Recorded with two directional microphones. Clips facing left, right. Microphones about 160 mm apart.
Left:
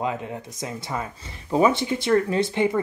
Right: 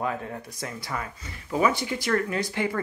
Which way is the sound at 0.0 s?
20° left (ahead or behind).